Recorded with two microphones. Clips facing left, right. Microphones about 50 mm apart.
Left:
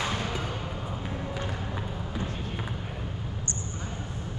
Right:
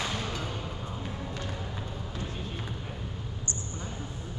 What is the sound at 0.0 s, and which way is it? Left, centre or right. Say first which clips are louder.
Music: left 3 dB; centre.